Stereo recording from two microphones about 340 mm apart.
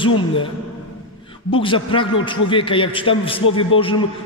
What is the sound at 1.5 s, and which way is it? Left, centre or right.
A man's voice, centre.